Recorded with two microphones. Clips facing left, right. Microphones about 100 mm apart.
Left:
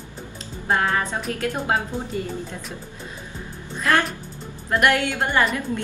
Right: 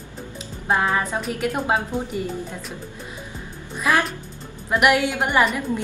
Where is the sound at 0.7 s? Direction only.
10° right (ahead or behind).